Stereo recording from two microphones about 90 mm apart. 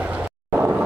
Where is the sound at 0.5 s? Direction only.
15° right (ahead or behind).